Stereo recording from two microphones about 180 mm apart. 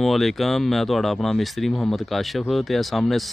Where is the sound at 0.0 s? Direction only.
Centre (ahead or behind).